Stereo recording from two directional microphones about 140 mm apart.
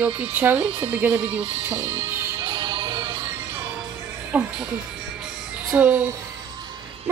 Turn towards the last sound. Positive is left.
turn(degrees=-10)  # may be behind; listen again after turning